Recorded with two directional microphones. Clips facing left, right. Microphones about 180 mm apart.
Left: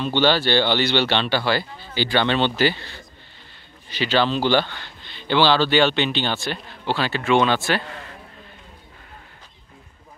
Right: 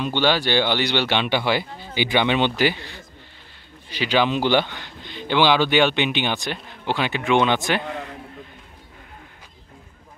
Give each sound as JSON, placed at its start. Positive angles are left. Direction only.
{"t": 0.0, "sound": "speech", "side_deg": -10}